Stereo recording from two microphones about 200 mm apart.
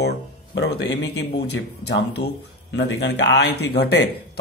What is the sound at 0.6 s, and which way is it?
Speech, 55° left (ahead or behind).